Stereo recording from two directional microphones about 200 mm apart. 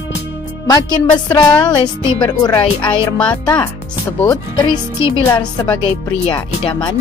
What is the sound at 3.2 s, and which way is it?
Speech, 10° left (ahead or behind).